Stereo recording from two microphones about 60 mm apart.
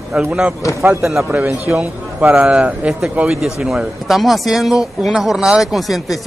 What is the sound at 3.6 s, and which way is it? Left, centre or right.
Speech, centre.